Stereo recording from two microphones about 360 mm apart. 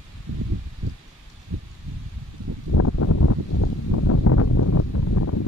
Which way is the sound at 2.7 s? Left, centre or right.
Left.